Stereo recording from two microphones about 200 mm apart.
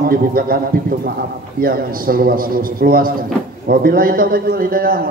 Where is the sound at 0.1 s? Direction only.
45° right (ahead or behind).